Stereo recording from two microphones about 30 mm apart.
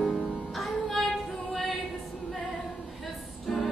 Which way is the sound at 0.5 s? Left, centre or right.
Centre.